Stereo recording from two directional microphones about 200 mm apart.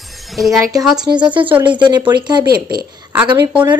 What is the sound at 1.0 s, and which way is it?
A woman's voice, 20° right (ahead or behind).